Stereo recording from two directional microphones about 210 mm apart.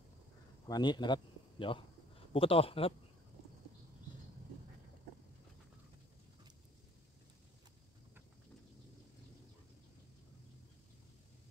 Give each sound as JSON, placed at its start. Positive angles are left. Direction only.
{"t": 0.7, "sound": "speech", "side_deg": 20}